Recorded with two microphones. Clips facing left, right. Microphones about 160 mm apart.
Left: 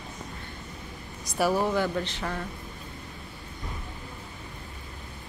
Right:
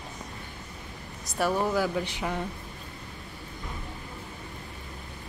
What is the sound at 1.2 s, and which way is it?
Speech, centre (ahead or behind).